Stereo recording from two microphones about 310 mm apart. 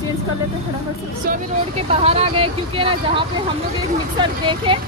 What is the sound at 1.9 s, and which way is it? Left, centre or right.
Speech, centre.